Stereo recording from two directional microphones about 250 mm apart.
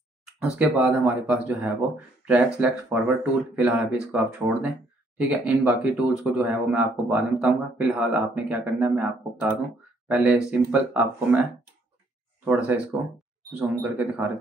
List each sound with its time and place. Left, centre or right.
0.2 s speech: centre
12.4 s speech: centre